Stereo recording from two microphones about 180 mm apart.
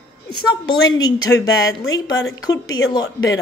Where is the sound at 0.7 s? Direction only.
20° left (ahead or behind).